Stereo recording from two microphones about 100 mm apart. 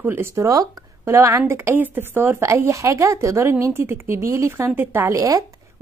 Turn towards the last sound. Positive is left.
turn(degrees=-30)  # may be behind; listen again after turning